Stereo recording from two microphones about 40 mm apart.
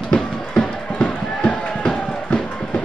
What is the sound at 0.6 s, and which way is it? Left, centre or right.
Music, left.